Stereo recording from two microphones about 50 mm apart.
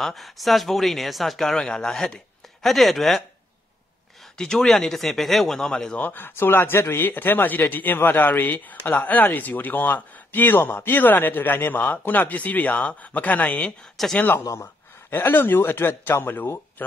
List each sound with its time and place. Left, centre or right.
0.0 s speech: centre
4.4 s speech: centre
5.7 s speech: centre
5.9 s speech: left
7.0 s speech: left
14.0 s speech: centre
15.0 s speech: left